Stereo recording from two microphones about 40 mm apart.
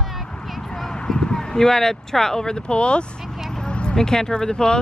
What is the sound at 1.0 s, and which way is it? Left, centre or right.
Speech, centre.